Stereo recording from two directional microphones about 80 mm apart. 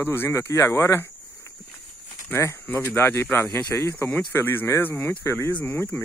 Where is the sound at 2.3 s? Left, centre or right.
Left.